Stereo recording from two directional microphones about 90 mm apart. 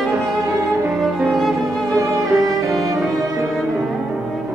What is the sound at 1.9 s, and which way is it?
Violin, 35° right (ahead or behind).